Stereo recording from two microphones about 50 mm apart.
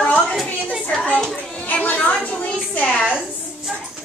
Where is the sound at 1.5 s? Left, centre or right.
Left.